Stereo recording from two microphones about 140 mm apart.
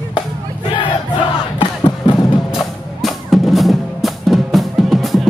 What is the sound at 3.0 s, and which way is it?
Music, centre (ahead or behind).